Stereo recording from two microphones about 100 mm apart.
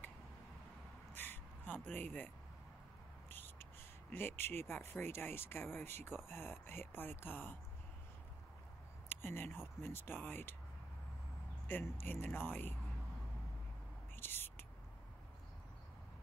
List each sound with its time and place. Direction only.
1.1 s gasp: 20° left (ahead or behind)
3.3 s a sound: 20° left (ahead or behind)
4.1 s speech: 20° left (ahead or behind)
9.1 s speech: 20° left (ahead or behind)
11.6 s speech: 20° left (ahead or behind)
14.1 s owl: 20° left (ahead or behind)